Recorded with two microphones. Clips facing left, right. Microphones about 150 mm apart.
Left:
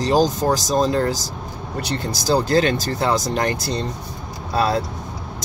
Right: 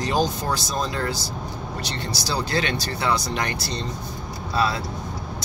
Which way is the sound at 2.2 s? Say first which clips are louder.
Left 9 dB; 45° left (ahead or behind).